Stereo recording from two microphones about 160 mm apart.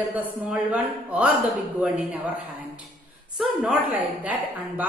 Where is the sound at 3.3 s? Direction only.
10° right (ahead or behind).